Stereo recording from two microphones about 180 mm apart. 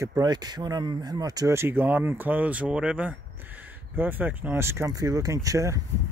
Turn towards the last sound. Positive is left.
turn(degrees=-20)  # may be behind; listen again after turning